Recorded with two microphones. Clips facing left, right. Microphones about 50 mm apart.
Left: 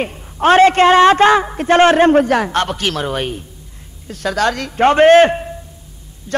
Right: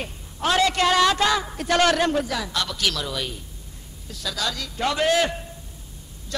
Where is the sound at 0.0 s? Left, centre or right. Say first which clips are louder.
Left 11 dB; left.